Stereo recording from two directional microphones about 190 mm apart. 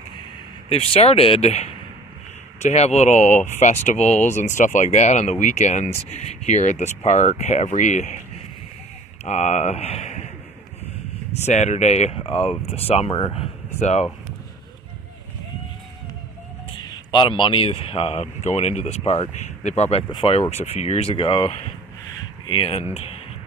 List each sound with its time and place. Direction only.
0.7 s speech: 30° left (ahead or behind)
9.2 s speech: 35° left (ahead or behind)
11.4 s speech: 35° left (ahead or behind)
16.7 s speech: 20° left (ahead or behind)